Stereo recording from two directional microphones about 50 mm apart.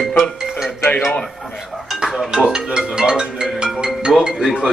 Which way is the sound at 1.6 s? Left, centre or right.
Centre.